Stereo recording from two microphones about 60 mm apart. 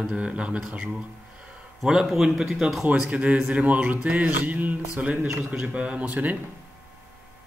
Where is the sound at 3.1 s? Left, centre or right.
Right.